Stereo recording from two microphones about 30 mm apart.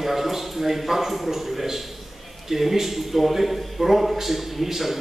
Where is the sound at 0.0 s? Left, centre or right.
Centre.